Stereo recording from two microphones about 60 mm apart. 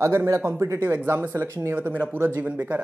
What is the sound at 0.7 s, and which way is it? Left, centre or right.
Speech, right.